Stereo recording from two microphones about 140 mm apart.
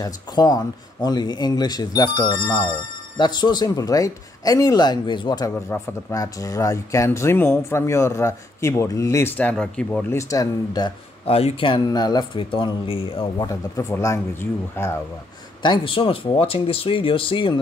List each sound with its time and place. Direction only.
0.0 s speech: 30° left (ahead or behind)
11.2 s speech: 45° left (ahead or behind)
13.5 s speech: 20° left (ahead or behind)
15.6 s speech: 35° left (ahead or behind)